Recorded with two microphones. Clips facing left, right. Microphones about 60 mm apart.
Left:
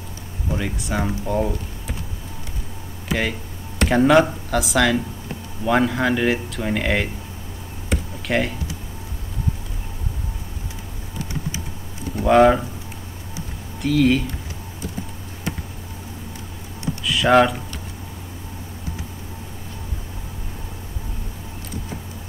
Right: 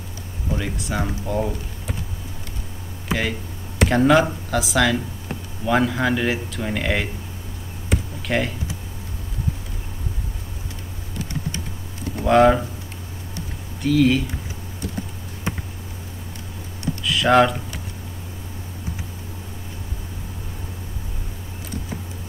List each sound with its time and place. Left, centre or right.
0.6 s speech: centre
3.8 s speech: centre
7.9 s a sound: centre
12.2 s speech: centre
13.7 s speech: centre
17.0 s speech: centre